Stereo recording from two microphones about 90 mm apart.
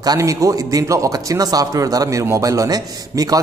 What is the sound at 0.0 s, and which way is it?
A man's voice, 45° right (ahead or behind).